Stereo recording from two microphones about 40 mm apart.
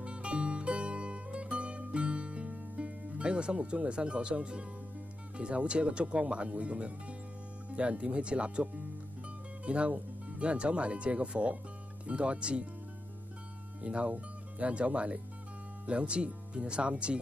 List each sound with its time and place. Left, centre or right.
0.0 s music: right
5.4 s speech: right
9.7 s speech: right
13.8 s speech: right